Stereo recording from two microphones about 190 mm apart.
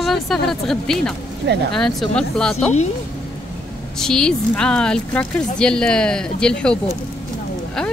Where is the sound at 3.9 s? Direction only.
5° left (ahead or behind).